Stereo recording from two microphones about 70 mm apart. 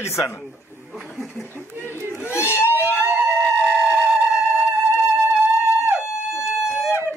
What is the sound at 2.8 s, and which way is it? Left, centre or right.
Music, right.